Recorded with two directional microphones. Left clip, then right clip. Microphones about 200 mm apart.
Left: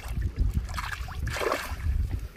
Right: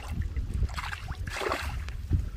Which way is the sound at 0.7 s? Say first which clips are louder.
Left 2 dB; 35° left (ahead or behind).